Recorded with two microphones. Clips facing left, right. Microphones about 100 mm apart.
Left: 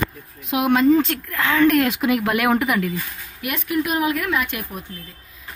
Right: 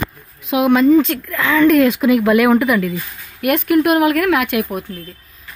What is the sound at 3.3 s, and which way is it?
Speech, 60° right (ahead or behind).